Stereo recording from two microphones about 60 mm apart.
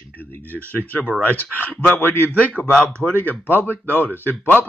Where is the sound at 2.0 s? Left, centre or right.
Left.